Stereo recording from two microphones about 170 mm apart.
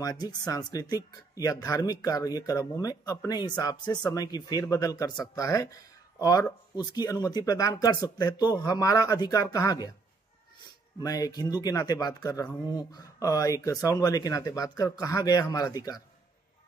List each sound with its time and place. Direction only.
0.0 s speech: 25° left (ahead or behind)
11.0 s speech: 20° left (ahead or behind)